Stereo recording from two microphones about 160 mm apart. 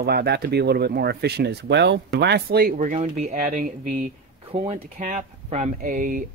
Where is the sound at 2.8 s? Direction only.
45° right (ahead or behind).